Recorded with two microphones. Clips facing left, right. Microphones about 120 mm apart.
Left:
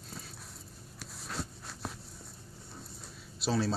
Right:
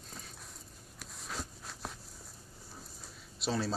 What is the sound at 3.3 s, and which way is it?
Speech, centre (ahead or behind).